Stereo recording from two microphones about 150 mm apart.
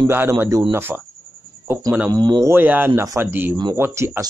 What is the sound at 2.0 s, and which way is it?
Speech, 30° right (ahead or behind).